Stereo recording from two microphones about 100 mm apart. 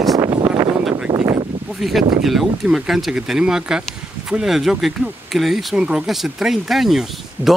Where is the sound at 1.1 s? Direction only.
65° right (ahead or behind).